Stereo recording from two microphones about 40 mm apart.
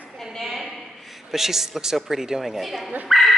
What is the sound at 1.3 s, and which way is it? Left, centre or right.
Speech, centre.